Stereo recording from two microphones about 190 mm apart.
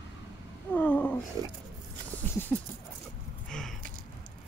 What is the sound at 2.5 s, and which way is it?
Speech, 10° left (ahead or behind).